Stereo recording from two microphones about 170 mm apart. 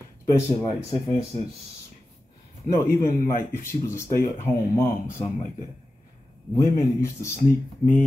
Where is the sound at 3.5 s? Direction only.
15° left (ahead or behind).